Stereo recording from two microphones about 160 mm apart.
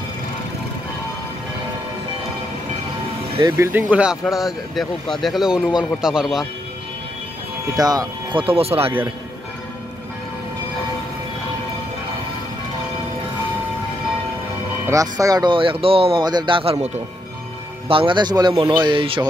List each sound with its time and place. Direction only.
3.5 s speech: 15° right (ahead or behind)
7.7 s speech: 25° right (ahead or behind)
14.9 s speech: 20° right (ahead or behind)